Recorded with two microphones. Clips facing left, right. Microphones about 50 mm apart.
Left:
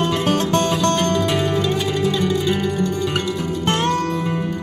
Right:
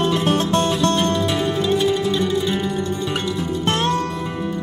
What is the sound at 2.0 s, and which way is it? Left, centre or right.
Music, right.